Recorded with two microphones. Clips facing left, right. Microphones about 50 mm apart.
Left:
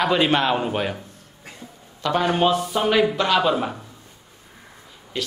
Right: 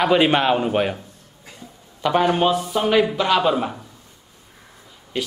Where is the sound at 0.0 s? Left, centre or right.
Centre.